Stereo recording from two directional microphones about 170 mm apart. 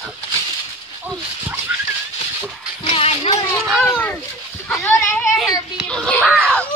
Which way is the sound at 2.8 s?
35° left (ahead or behind).